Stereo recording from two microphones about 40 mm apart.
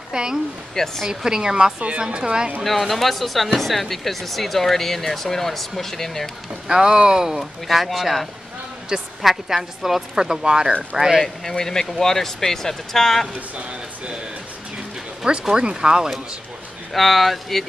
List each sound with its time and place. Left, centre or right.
0.1 s a woman's voice: centre
2.6 s speech: centre
6.7 s a woman's voice: centre
10.7 s speech: right
11.5 s speech: centre
13.3 s speech: right
15.4 s a woman's voice: centre
16.9 s speech: centre